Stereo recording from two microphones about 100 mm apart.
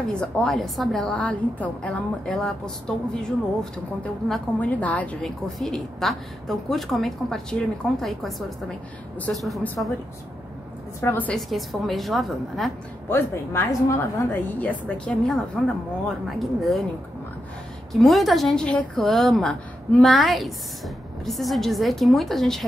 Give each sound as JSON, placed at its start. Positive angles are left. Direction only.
{"t": 0.1, "sound": "a woman's voice", "side_deg": 10}
{"t": 5.2, "sound": "a woman's voice", "side_deg": 5}
{"t": 9.8, "sound": "a woman's voice", "side_deg": 15}
{"t": 11.0, "sound": "a woman's voice", "side_deg": 20}
{"t": 11.3, "sound": "a woman's voice", "side_deg": 0}
{"t": 13.1, "sound": "a woman's voice", "side_deg": 25}
{"t": 14.6, "sound": "a woman's voice", "side_deg": 10}
{"t": 17.9, "sound": "a woman's voice", "side_deg": 0}